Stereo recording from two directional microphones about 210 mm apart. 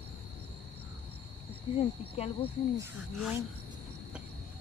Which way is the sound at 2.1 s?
25° left (ahead or behind).